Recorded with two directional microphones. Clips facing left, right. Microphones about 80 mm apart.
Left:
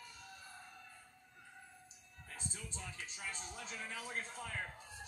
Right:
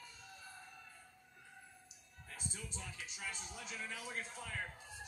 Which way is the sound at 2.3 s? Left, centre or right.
Left.